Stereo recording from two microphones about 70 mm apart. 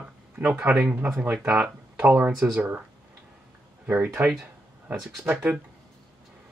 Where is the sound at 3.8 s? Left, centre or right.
Right.